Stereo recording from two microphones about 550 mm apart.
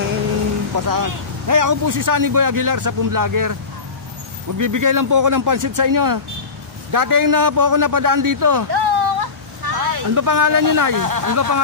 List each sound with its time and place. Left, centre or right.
0.7 s speech: right
4.6 s a man's voice: right